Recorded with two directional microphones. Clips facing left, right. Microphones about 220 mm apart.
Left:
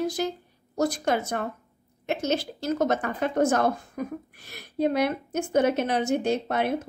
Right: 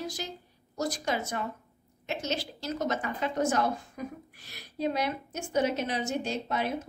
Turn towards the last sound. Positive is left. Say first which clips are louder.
# left 6 dB
turn(degrees=60)  # may be behind; listen again after turning